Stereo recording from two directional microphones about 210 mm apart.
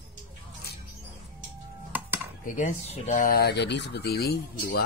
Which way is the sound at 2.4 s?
40° left (ahead or behind).